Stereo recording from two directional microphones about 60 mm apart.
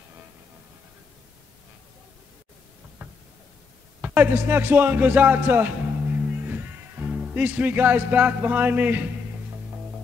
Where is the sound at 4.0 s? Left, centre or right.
Right.